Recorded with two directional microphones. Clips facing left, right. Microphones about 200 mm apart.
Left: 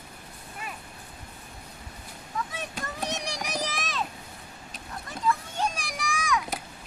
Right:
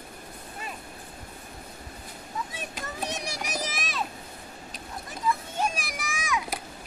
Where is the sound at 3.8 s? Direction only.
15° right (ahead or behind).